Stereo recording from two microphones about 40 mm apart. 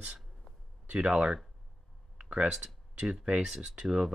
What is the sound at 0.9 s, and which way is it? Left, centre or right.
Speech, right.